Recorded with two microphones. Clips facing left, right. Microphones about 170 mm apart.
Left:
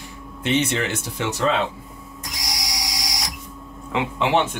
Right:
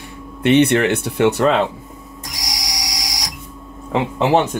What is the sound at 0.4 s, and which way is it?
Speech, 65° right (ahead or behind).